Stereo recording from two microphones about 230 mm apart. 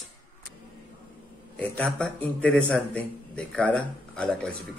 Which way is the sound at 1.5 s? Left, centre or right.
Centre.